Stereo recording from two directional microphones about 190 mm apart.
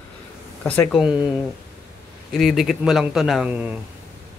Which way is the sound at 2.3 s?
Centre (ahead or behind).